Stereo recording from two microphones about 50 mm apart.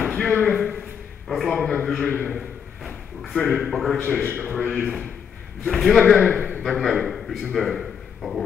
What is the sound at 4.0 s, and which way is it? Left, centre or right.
Speech, left.